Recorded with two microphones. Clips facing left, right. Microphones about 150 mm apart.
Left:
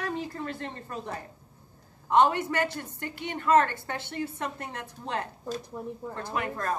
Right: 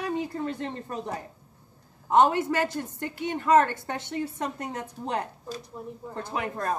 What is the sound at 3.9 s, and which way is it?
A woman's voice, 20° right (ahead or behind).